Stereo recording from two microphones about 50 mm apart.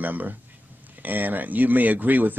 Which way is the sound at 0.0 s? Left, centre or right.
Right.